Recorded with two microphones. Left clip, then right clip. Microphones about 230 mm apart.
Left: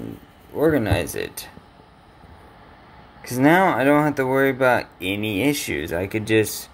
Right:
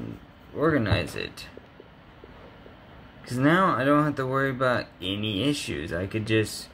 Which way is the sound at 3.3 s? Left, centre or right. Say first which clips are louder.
Left 5 dB; centre.